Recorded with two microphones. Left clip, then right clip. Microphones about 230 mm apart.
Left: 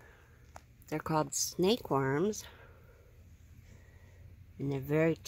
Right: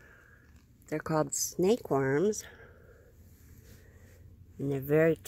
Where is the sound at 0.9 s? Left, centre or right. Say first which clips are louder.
Right 2 dB; centre.